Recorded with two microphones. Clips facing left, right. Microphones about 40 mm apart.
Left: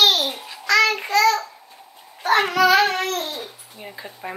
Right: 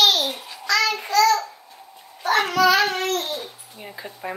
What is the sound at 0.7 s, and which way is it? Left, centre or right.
Child singing, left.